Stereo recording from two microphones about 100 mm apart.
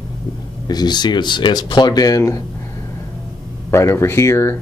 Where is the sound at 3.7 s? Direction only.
25° left (ahead or behind).